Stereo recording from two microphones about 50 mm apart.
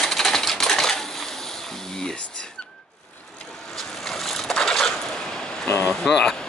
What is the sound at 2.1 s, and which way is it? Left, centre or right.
Whispering, left.